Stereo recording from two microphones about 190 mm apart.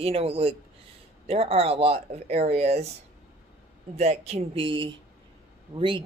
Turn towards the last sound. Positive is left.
turn(degrees=-25)  # may be behind; listen again after turning